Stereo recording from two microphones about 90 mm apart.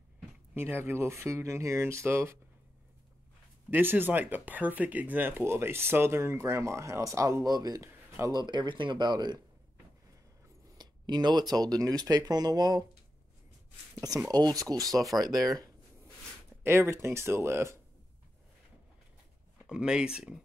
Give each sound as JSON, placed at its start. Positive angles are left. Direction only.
{"t": 0.6, "sound": "speech", "side_deg": -25}
{"t": 3.7, "sound": "speech", "side_deg": -20}
{"t": 7.4, "sound": "speech", "side_deg": -45}
{"t": 10.8, "sound": "speech", "side_deg": -50}
{"t": 13.9, "sound": "speech", "side_deg": -40}
{"t": 16.6, "sound": "speech", "side_deg": -30}
{"t": 19.6, "sound": "speech", "side_deg": -10}